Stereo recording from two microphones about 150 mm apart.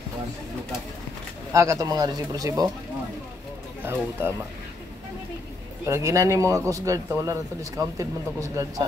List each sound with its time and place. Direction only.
1.5 s speech: 20° right (ahead or behind)
3.8 s speech: 15° right (ahead or behind)
5.9 s speech: 20° right (ahead or behind)